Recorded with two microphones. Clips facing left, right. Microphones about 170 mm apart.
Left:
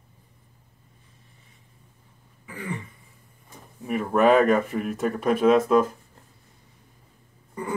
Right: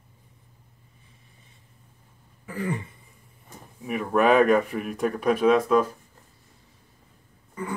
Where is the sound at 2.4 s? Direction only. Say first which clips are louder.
Right 4 dB; 40° right (ahead or behind).